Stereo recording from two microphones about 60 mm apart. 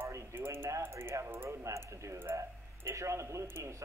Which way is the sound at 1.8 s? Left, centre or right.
Right.